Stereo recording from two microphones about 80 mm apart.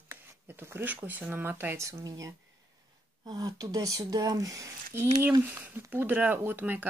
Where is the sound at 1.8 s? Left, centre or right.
Right.